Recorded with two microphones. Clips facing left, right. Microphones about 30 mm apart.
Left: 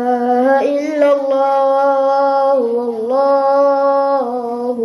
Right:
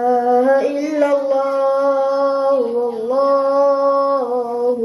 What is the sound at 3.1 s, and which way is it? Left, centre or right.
Female singing, left.